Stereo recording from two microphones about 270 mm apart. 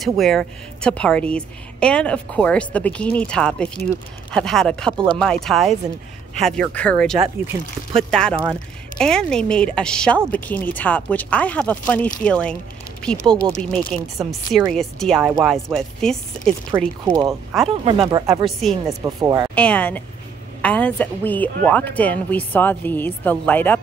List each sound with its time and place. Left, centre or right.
0.0 s speech: centre
17.0 s speech: centre
18.3 s speech: centre
19.2 s speech: centre
19.5 s speech: centre